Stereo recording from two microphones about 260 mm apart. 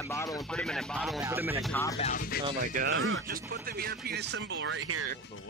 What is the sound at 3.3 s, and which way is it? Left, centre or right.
Speech, right.